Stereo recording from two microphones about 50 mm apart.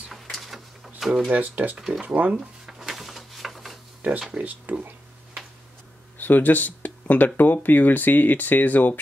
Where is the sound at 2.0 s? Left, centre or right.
Right.